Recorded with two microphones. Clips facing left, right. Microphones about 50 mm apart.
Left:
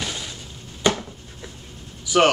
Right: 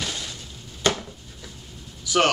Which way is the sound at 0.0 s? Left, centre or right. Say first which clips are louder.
Left 1 dB; centre.